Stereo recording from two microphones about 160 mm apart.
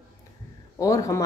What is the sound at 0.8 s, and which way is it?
Speech, 20° left (ahead or behind).